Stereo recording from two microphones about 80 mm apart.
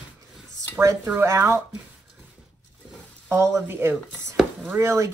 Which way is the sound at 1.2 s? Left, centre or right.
Right.